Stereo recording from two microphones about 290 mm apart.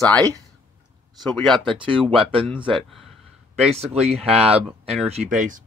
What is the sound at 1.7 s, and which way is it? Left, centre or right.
Speech, centre.